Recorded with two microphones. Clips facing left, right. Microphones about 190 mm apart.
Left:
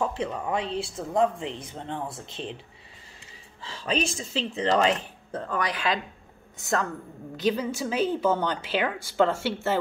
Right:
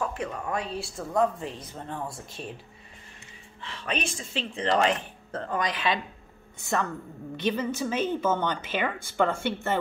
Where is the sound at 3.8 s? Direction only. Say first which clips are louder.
Left 4 dB; 25° left (ahead or behind).